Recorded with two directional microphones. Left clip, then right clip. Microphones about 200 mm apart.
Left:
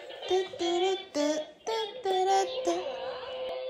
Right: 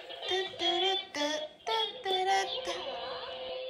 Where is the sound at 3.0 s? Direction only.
10° left (ahead or behind).